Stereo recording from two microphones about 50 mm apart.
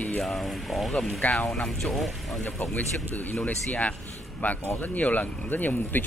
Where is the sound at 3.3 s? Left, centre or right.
Centre.